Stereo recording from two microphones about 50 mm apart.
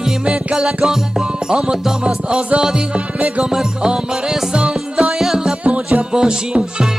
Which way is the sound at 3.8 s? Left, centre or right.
Centre.